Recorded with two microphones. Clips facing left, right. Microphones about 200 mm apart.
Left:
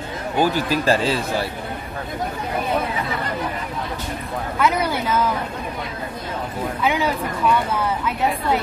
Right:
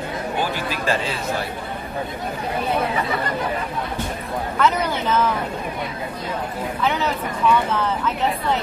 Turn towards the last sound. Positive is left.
turn(degrees=10)  # may be behind; listen again after turning